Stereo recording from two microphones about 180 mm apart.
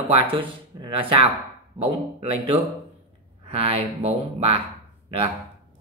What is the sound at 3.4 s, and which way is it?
Speech, 35° right (ahead or behind).